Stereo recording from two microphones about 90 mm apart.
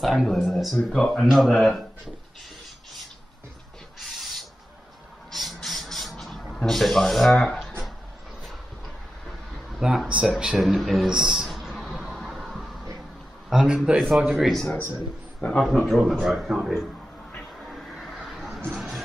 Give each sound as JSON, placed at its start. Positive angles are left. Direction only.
{"t": 0.0, "sound": "speech", "side_deg": 0}
{"t": 4.0, "sound": "owl", "side_deg": 0}
{"t": 5.3, "sound": "a sound", "side_deg": 0}
{"t": 6.5, "sound": "speech", "side_deg": 0}
{"t": 9.7, "sound": "speech", "side_deg": -5}
{"t": 10.4, "sound": "a sound", "side_deg": -5}
{"t": 12.2, "sound": "music", "side_deg": 0}
{"t": 13.5, "sound": "a man's voice", "side_deg": -5}
{"t": 14.7, "sound": "a man's voice", "side_deg": 30}
{"t": 15.9, "sound": "speech", "side_deg": 0}
{"t": 17.6, "sound": "vehicle", "side_deg": 0}
{"t": 18.7, "sound": "a sound", "side_deg": -5}